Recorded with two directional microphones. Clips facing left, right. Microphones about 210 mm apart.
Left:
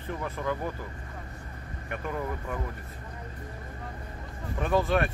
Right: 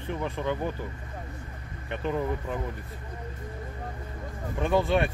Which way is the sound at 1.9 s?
20° right (ahead or behind).